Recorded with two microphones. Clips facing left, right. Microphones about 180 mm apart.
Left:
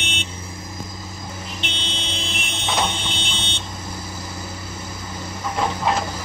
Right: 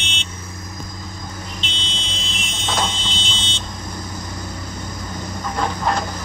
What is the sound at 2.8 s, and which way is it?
Vehicle, 60° left (ahead or behind).